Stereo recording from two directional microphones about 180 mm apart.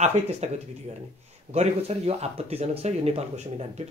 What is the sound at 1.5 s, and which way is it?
Speech, 35° right (ahead or behind).